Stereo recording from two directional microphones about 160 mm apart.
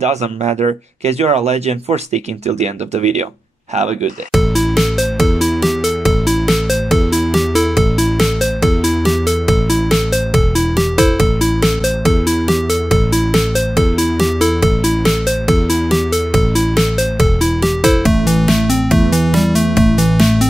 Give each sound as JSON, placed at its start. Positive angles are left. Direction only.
{"t": 0.6, "sound": "speech", "side_deg": -45}
{"t": 4.3, "sound": "music", "side_deg": 0}